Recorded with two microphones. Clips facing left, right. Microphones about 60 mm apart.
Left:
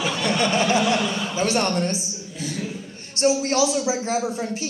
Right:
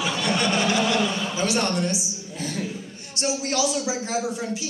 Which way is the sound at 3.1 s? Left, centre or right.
Left.